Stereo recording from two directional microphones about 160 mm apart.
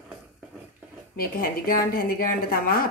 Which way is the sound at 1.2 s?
60° left (ahead or behind).